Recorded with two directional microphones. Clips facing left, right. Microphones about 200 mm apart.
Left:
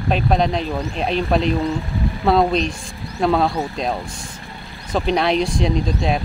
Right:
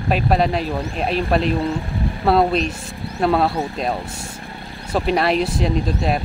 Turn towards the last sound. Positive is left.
turn(degrees=-5)  # may be behind; listen again after turning